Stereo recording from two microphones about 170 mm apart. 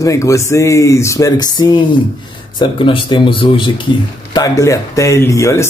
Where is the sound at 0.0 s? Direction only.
20° left (ahead or behind).